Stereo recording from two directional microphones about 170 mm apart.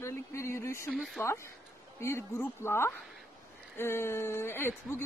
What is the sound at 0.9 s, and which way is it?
Speech, centre (ahead or behind).